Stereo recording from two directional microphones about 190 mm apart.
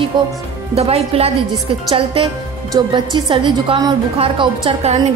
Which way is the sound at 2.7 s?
25° right (ahead or behind).